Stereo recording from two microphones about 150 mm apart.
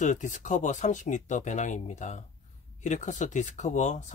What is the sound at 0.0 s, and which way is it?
Speech, 55° left (ahead or behind).